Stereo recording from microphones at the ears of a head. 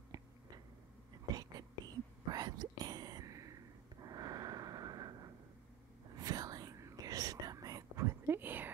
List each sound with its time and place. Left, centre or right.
1.1 s whispering: right
2.8 s a sound: right
6.0 s whispering: right